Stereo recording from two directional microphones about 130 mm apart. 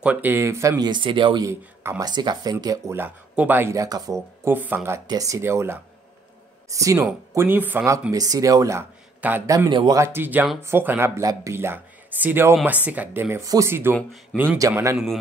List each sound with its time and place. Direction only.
0.0 s speech: 10° right (ahead or behind); by 1.4 s 40° right (ahead or behind)
1.4 s speech: 20° right (ahead or behind)
2.0 s speech: 35° right (ahead or behind); by 3.7 s 15° right (ahead or behind)
3.7 s speech: 25° right (ahead or behind)
4.6 s speech: 15° right (ahead or behind)
5.0 s speech: 25° right (ahead or behind)
7.3 s speech: 15° right (ahead or behind)
9.2 s speech: 10° right (ahead or behind)
9.7 s speech: 35° right (ahead or behind)
9.9 s a man's voice: 20° right (ahead or behind)
14.7 s speech: 20° right (ahead or behind)